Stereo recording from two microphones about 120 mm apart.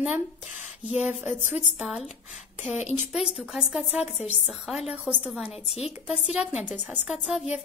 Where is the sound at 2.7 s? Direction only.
70° left (ahead or behind).